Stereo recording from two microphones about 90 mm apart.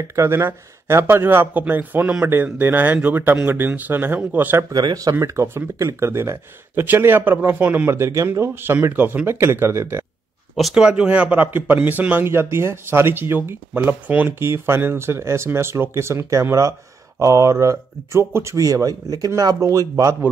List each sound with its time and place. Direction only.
0.1 s speech: 30° right (ahead or behind)
4.7 s speech: 40° right (ahead or behind)
5.2 s speech: 30° right (ahead or behind)
10.5 s speech: 5° right (ahead or behind); by 20.2 s 40° right (ahead or behind)